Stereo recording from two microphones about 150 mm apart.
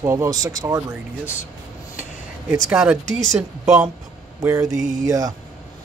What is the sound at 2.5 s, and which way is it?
Speech, 5° right (ahead or behind).